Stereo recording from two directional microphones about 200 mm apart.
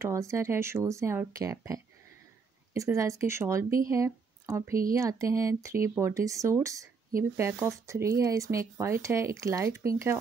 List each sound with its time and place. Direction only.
0.0 s speech: 15° right (ahead or behind)